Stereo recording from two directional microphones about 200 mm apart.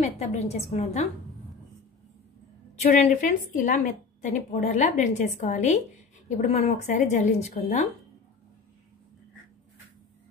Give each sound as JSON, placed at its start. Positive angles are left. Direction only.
{"t": 0.0, "sound": "a woman's voice", "side_deg": 35}
{"t": 2.8, "sound": "a woman's voice", "side_deg": 35}